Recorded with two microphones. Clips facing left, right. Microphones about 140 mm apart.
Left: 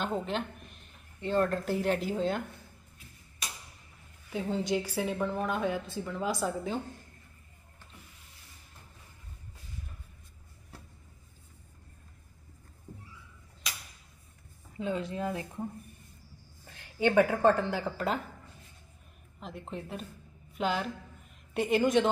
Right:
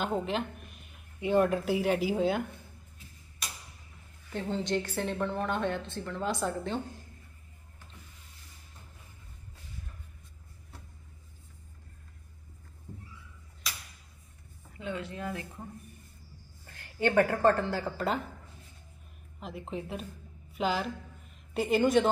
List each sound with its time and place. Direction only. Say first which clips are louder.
0.0 s speech: right 1 dB; centre (ahead or behind)
4.3 s a woman's voice: left 1 dB; 5° left (ahead or behind)
14.8 s a woman's voice: left 4 dB; 30° left (ahead or behind)
16.6 s a sound: left 1 dB; 15° left (ahead or behind)
17.2 s speech: even; 5° left (ahead or behind)
17.8 s a woman's voice: even; centre (ahead or behind)
19.4 s a woman's voice: right 2 dB; centre (ahead or behind)